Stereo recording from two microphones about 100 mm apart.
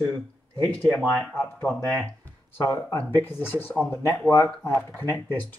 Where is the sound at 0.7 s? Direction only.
15° left (ahead or behind).